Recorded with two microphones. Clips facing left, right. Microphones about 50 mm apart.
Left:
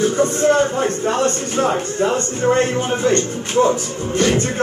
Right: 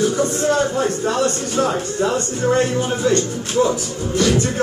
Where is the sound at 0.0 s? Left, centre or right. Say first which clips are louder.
Left 2 dB; left.